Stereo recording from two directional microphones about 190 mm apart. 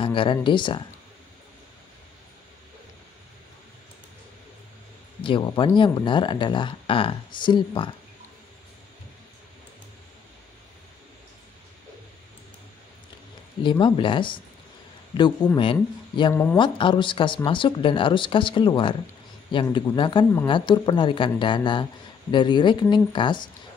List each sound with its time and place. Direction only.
0.0 s speech: 25° left (ahead or behind)
5.2 s speech: 25° left (ahead or behind)
13.6 s speech: 25° left (ahead or behind)